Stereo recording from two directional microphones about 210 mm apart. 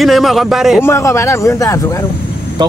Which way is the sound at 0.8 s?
15° left (ahead or behind).